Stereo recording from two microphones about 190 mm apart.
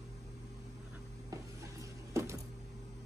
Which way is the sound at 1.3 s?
15° right (ahead or behind).